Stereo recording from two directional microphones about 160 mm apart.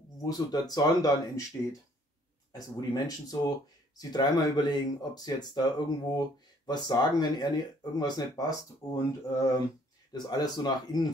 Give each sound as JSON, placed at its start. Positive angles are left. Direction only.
{"t": 0.2, "sound": "speech", "side_deg": 25}